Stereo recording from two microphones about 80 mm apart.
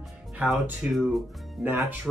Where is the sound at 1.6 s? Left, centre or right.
Centre.